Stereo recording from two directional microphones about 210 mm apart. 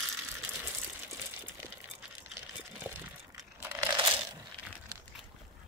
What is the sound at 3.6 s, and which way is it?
Crumpling, 15° right (ahead or behind).